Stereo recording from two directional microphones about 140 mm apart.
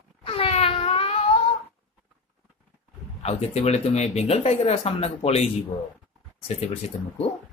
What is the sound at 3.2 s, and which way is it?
Speech, 50° left (ahead or behind).